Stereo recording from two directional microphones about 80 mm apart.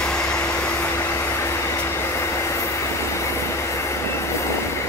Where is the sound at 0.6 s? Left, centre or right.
Left.